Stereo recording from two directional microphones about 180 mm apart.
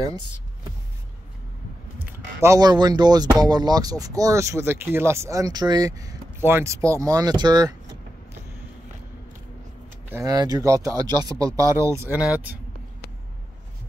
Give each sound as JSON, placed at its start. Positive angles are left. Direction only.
{"t": 2.4, "sound": "speech", "side_deg": -20}
{"t": 10.1, "sound": "speech", "side_deg": -20}